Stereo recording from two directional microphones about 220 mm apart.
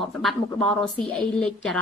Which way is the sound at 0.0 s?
Centre (ahead or behind).